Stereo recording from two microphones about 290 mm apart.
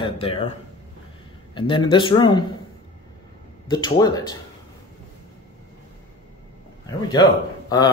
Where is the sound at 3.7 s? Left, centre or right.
Centre.